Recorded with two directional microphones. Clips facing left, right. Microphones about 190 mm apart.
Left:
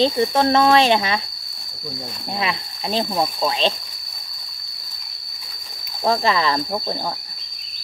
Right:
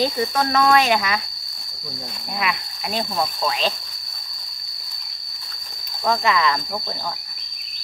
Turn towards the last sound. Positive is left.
turn(degrees=35)  # may be behind; listen again after turning